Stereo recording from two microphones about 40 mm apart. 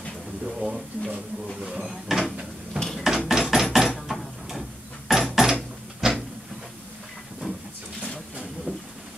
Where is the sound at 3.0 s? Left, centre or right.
Centre.